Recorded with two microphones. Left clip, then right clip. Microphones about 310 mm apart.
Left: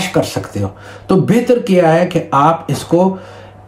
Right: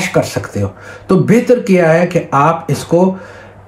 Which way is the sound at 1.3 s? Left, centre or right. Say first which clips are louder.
Right 4 dB; centre.